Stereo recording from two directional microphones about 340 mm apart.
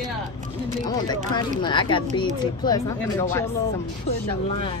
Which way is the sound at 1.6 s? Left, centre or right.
Centre.